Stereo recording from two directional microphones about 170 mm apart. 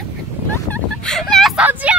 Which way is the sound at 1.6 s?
10° right (ahead or behind).